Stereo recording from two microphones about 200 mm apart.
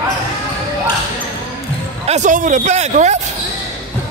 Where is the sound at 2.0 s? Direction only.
35° right (ahead or behind).